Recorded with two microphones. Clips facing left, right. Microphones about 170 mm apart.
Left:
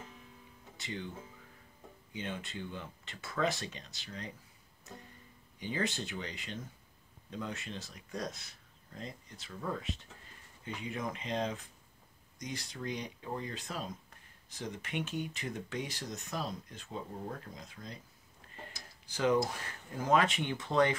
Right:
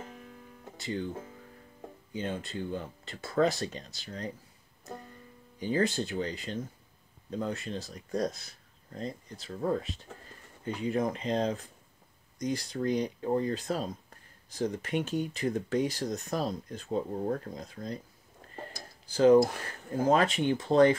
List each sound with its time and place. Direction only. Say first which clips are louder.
0.0 s music: right 7 dB; 55° right (ahead or behind)
0.7 s speech: right 8 dB; 40° right (ahead or behind)
2.1 s speech: right 6 dB; 40° right (ahead or behind)
5.6 s speech: right 7 dB; 40° right (ahead or behind)
19.1 s speech: right 9 dB; 35° right (ahead or behind)